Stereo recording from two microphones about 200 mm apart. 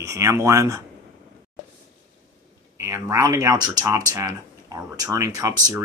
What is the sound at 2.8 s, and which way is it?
Speech, 15° right (ahead or behind).